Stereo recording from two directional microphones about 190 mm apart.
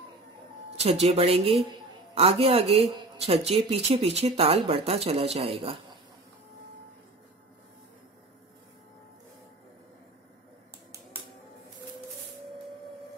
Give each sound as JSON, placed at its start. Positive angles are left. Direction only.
{"t": 1.0, "sound": "speech", "side_deg": -30}